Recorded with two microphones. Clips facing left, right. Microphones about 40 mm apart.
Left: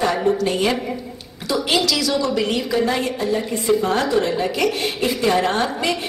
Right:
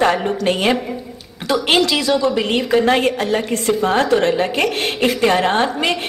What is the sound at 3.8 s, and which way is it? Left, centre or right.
A woman's voice, right.